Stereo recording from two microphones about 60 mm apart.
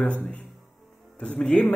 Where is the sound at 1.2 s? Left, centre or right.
Centre.